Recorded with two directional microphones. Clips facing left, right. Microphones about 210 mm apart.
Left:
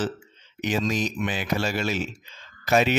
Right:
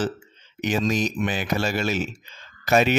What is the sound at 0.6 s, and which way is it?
Speech, 45° right (ahead or behind).